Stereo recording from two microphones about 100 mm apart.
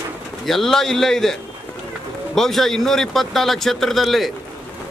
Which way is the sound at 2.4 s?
5° left (ahead or behind).